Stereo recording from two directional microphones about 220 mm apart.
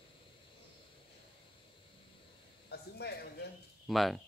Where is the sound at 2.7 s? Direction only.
45° left (ahead or behind).